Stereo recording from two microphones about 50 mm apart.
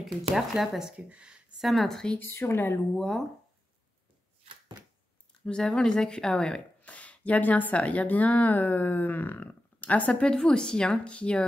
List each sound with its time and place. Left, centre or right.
0.0 s speech: centre
0.9 s speech: right
1.6 s a woman's voice: centre
2.4 s speech: left
3.0 s a woman's voice: centre
5.4 s speech: centre
6.8 s a woman's voice: left